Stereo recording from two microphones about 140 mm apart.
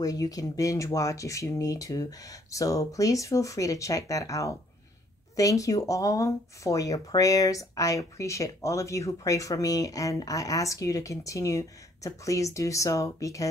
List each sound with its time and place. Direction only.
0.0 s speech: 25° left (ahead or behind)